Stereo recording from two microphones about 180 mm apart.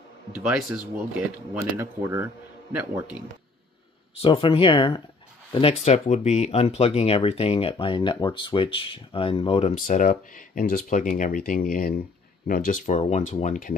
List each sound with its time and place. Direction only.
0.3 s speech: 5° right (ahead or behind)
1.6 s a man's voice: 15° right (ahead or behind)
4.2 s speech: 30° left (ahead or behind)
9.8 s speech: 45° left (ahead or behind)